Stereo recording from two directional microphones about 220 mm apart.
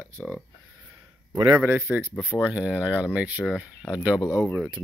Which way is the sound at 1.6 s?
5° right (ahead or behind).